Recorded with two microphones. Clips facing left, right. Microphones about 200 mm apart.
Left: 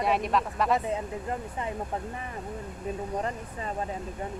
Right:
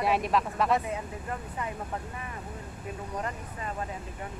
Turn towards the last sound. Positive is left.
turn(degrees=30)  # may be behind; listen again after turning